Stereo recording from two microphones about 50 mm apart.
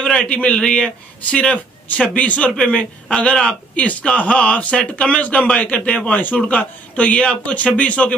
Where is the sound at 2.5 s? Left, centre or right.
Centre.